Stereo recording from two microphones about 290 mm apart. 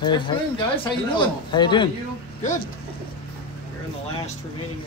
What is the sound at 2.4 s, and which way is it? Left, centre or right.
Speech, left.